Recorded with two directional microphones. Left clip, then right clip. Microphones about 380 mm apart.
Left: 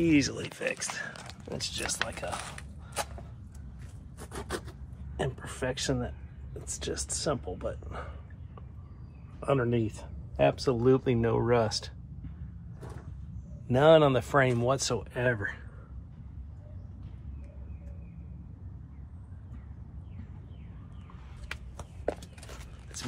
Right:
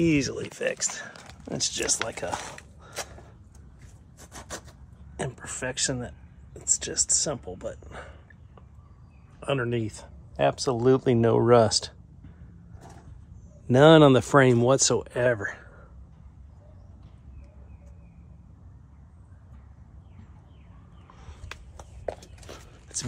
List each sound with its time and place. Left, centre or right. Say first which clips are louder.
0.0 s speech: right 2 dB; right
4.3 s rub: left 3 dB; centre
5.7 s speech: right 2 dB; right
9.4 s speech: even; right
9.8 s speech: right 1 dB; right
10.3 s speech: right 2 dB; right
13.7 s speech: right 5 dB; right